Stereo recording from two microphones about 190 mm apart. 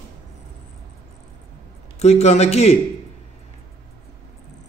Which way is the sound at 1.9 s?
35° left (ahead or behind).